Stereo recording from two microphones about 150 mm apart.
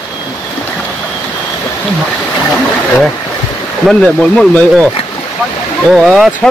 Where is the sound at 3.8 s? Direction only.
5° left (ahead or behind).